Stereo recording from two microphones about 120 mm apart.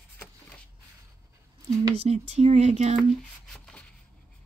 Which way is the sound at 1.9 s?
60° right (ahead or behind).